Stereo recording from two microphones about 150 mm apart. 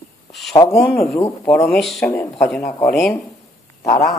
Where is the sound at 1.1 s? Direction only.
15° left (ahead or behind).